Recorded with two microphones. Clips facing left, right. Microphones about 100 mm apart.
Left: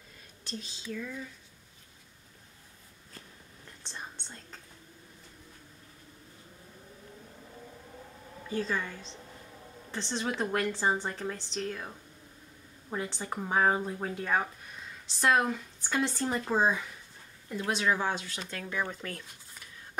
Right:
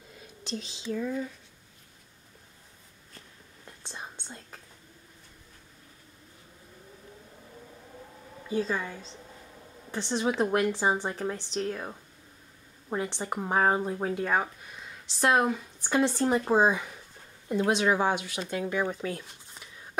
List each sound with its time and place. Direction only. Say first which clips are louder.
0.5 s speech: right 5 dB; 25° right (ahead or behind)
3.8 s whispering: right 2 dB; 15° right (ahead or behind)
8.5 s a woman's voice: right 3 dB; 10° right (ahead or behind)
11.7 s a woman's voice: right 4 dB; 20° right (ahead or behind); by 15.4 s 5° right (ahead or behind)
16.2 s a woman's voice: right 5 dB; 20° right (ahead or behind)